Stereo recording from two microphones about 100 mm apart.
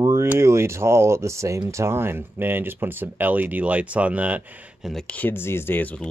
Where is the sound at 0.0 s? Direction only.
30° right (ahead or behind).